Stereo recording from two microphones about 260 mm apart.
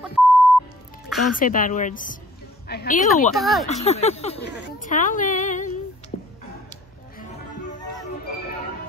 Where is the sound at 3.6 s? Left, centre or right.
Left.